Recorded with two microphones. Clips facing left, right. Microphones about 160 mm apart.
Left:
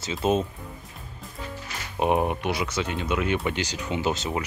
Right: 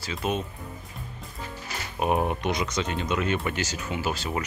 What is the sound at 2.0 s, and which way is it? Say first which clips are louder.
Speech: left 2 dB; 15° left (ahead or behind).